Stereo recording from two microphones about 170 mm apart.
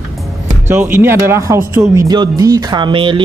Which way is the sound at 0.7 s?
10° right (ahead or behind).